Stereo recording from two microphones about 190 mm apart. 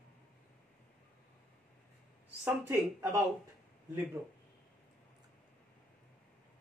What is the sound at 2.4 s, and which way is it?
Speech, 15° right (ahead or behind).